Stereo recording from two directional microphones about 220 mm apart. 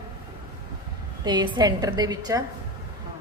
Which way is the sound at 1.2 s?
20° right (ahead or behind).